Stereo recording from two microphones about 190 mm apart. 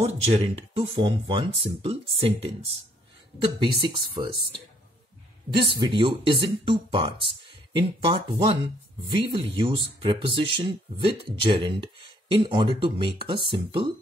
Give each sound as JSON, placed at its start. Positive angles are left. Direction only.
{"t": 0.0, "sound": "speech", "side_deg": -35}
{"t": 3.8, "sound": "speech", "side_deg": -25}